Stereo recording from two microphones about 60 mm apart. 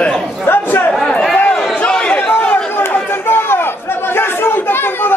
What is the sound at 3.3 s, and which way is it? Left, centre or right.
Chatter, left.